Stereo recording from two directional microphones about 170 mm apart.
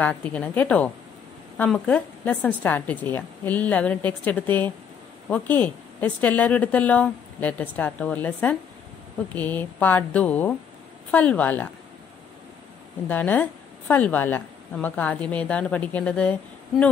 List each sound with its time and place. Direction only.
0.0 s a woman's voice: 10° left (ahead or behind)
13.1 s a woman's voice: 10° left (ahead or behind)